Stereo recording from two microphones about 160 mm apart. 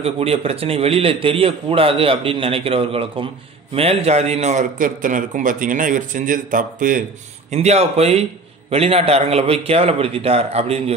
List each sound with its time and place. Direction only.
0.0 s a man's voice: 40° right (ahead or behind); by 7.1 s 55° right (ahead or behind)
7.5 s a man's voice: 40° right (ahead or behind)